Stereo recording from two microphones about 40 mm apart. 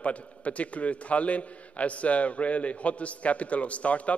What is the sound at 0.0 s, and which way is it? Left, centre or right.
A man's voice, left.